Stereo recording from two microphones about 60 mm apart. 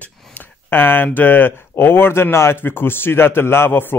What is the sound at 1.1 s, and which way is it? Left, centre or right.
A man's voice, left.